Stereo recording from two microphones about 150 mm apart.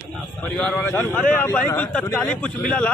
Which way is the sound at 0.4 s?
10° left (ahead or behind).